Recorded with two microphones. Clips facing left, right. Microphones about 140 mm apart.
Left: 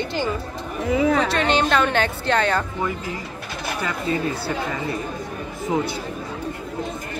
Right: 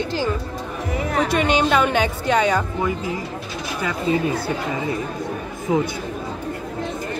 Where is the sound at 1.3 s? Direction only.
10° right (ahead or behind).